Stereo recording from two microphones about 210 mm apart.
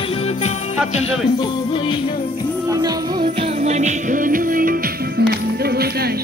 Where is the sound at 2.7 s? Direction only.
20° right (ahead or behind).